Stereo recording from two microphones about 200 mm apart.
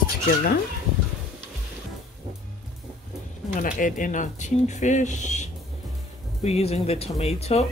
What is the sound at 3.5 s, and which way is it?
Speech, 40° left (ahead or behind).